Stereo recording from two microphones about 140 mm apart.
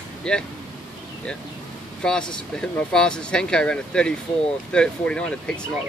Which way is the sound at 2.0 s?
5° left (ahead or behind).